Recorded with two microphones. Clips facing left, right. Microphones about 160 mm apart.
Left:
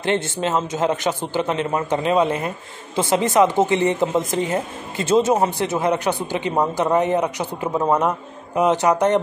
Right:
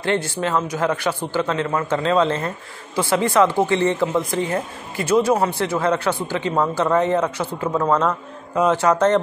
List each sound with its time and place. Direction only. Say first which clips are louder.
0.0 s speech: even; 20° left (ahead or behind)